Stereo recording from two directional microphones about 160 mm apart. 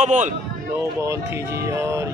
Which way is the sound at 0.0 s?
50° right (ahead or behind).